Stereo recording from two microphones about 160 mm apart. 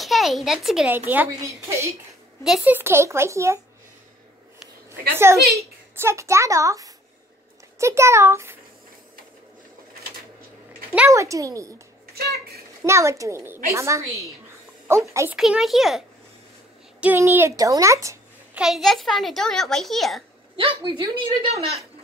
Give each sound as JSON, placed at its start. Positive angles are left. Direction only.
{"t": 0.0, "sound": "a child's voice", "side_deg": 0}
{"t": 2.4, "sound": "speech", "side_deg": -5}
{"t": 5.1, "sound": "speech", "side_deg": -15}
{"t": 10.7, "sound": "a woman's voice", "side_deg": -15}
{"t": 12.8, "sound": "speech", "side_deg": -20}
{"t": 15.3, "sound": "a child's voice", "side_deg": -5}
{"t": 17.0, "sound": "speech", "side_deg": -15}
{"t": 18.5, "sound": "a child's voice", "side_deg": -5}
{"t": 20.5, "sound": "speech", "side_deg": -30}